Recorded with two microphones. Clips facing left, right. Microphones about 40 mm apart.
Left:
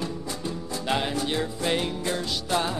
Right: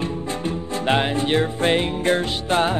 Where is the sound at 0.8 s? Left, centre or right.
Right.